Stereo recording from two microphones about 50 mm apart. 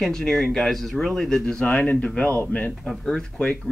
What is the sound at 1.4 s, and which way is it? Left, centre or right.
Speech, left.